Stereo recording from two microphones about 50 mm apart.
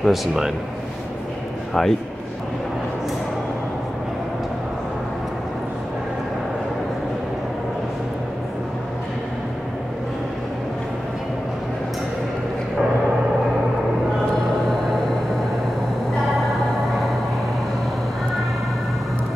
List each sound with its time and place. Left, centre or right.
0.0 s speech: centre
1.7 s speech: centre